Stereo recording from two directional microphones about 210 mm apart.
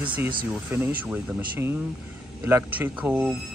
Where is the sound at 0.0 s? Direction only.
5° right (ahead or behind).